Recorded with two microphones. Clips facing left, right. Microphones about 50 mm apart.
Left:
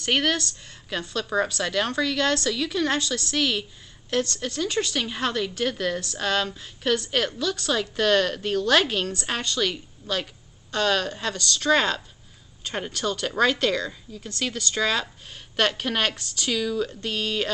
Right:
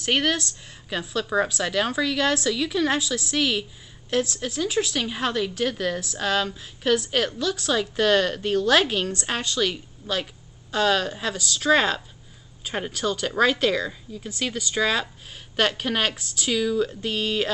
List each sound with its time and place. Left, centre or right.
0.0 s a woman's voice: centre